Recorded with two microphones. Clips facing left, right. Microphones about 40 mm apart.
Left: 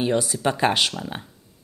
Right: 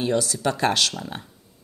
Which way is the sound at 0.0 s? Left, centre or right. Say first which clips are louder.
Left 1 dB; centre.